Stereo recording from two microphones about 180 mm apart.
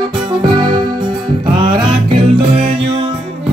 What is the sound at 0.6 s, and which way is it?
Music, 25° right (ahead or behind).